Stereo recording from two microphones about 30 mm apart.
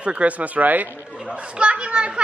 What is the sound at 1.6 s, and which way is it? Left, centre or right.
Speech, right.